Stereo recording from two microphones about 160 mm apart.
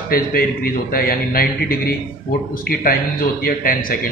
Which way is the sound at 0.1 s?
65° left (ahead or behind).